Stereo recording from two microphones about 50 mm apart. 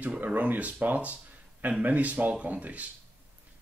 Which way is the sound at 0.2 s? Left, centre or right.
Right.